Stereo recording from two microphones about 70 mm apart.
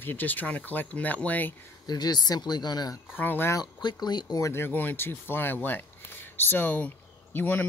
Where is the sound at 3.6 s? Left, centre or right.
Left.